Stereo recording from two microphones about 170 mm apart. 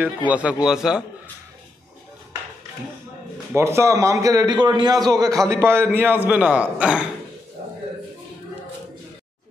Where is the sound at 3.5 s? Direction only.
15° right (ahead or behind).